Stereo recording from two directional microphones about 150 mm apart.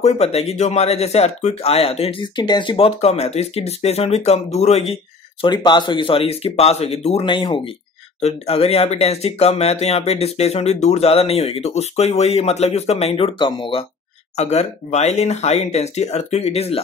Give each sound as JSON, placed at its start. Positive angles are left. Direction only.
{"t": 0.0, "sound": "speech", "side_deg": 45}
{"t": 5.4, "sound": "speech", "side_deg": 30}
{"t": 8.2, "sound": "speech", "side_deg": 45}
{"t": 14.3, "sound": "speech", "side_deg": 45}